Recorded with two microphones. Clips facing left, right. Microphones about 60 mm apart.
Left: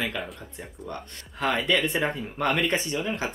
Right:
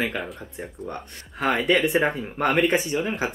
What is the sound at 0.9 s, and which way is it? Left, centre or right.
Speech, right.